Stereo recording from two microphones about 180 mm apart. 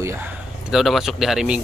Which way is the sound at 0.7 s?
Centre (ahead or behind).